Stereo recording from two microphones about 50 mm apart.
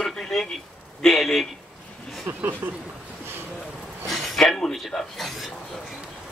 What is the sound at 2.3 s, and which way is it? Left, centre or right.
Speech, right.